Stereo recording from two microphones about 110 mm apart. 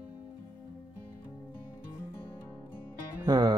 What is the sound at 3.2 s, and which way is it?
Music, 40° right (ahead or behind).